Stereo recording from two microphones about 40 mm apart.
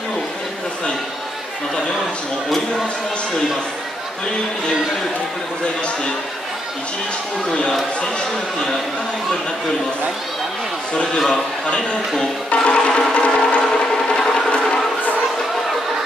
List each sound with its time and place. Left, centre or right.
11.1 s a man's voice: centre
11.6 s a man's voice: left
12.6 s music: left
13.1 s a sound: left